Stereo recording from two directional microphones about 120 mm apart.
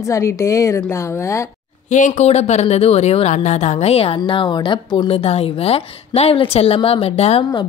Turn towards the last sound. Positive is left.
turn(degrees=55)  # may be behind; listen again after turning